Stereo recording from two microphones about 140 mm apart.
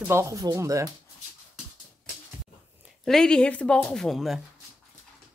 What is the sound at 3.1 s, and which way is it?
Speech, 5° left (ahead or behind).